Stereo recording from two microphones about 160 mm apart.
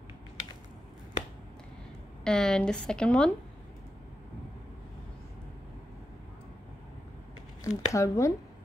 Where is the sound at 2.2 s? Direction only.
5° left (ahead or behind).